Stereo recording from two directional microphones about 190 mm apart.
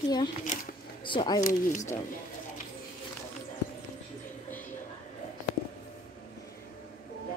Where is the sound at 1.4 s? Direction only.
40° left (ahead or behind).